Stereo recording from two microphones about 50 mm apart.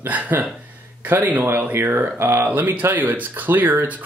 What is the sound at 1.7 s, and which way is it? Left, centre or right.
Speech, right.